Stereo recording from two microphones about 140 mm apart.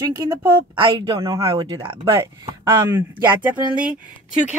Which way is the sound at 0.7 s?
35° right (ahead or behind).